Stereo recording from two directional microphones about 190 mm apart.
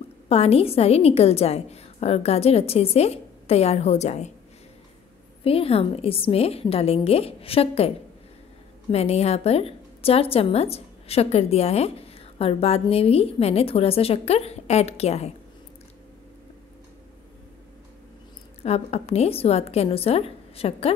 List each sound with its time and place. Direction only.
0.3 s a woman's voice: 30° left (ahead or behind)
5.4 s a woman's voice: 30° left (ahead or behind)
8.9 s a woman's voice: 35° left (ahead or behind)
18.6 s a woman's voice: 35° left (ahead or behind)